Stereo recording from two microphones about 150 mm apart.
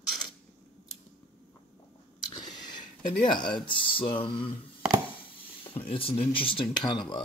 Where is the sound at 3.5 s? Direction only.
35° left (ahead or behind).